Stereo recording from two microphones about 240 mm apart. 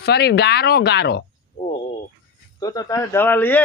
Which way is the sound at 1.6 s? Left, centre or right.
Left.